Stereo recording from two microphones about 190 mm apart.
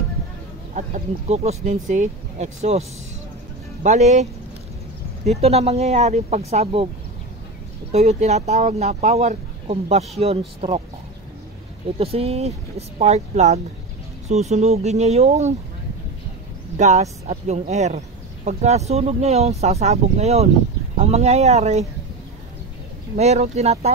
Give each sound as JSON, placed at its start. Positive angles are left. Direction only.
{"t": 0.7, "sound": "speech", "side_deg": -40}
{"t": 3.8, "sound": "speech", "side_deg": -40}
{"t": 7.9, "sound": "speech", "side_deg": -35}
{"t": 12.0, "sound": "speech", "side_deg": -30}
{"t": 16.7, "sound": "speech", "side_deg": -35}
{"t": 23.1, "sound": "speech", "side_deg": -35}